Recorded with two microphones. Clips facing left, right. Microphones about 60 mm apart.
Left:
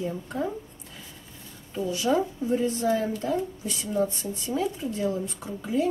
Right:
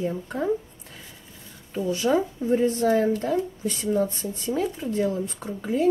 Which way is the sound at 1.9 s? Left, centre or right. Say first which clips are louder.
Right 2 dB; right.